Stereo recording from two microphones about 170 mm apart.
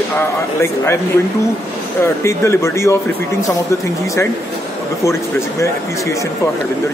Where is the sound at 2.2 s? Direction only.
15° left (ahead or behind).